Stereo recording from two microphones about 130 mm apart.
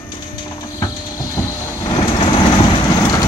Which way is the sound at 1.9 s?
40° left (ahead or behind).